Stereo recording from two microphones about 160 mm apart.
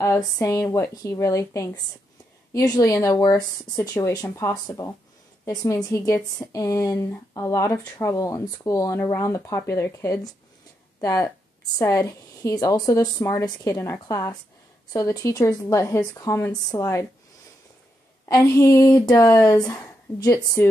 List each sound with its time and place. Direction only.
0.0 s a woman's voice: 20° left (ahead or behind)
18.3 s a woman's voice: 20° left (ahead or behind)